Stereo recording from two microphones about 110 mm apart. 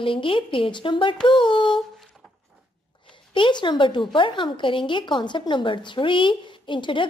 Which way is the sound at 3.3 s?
45° left (ahead or behind).